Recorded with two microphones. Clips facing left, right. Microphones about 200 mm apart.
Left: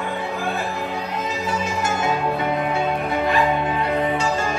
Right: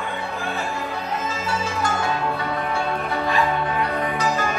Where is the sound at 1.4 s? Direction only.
20° left (ahead or behind).